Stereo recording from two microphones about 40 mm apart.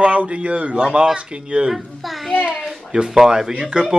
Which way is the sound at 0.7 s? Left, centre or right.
Right.